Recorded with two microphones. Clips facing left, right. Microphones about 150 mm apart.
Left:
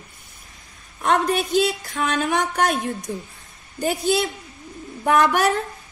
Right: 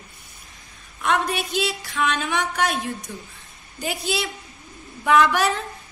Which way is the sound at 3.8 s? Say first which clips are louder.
Left 6 dB; 50° left (ahead or behind).